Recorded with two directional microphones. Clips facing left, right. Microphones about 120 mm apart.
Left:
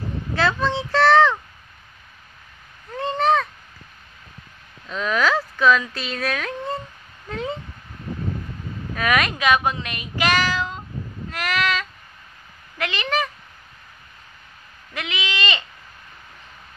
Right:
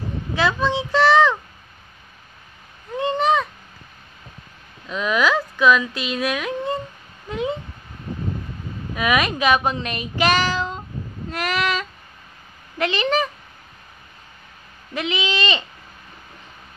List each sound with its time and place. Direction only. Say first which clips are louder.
0.4 s speech: right 1 dB; 10° right (ahead or behind)
3.0 s a sound: right 1 dB; 15° right (ahead or behind)
4.8 s speech: right 1 dB; 10° right (ahead or behind)
7.2 s a sound: right 3 dB; 10° right (ahead or behind)
8.9 s a child's voice: right 1 dB; 15° right (ahead or behind)
11.2 s child singing: right 1 dB; 20° right (ahead or behind)
12.7 s a child's voice: right 4 dB; 25° right (ahead or behind)
15.0 s a child's voice: right 4 dB; 20° right (ahead or behind)